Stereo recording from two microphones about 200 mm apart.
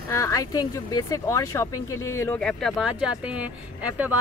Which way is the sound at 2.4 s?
5° left (ahead or behind).